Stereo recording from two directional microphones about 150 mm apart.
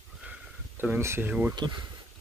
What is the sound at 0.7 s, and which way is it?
Speech, 15° right (ahead or behind).